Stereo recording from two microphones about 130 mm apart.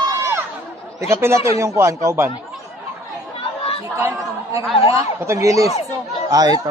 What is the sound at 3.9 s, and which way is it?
Speech, 20° right (ahead or behind).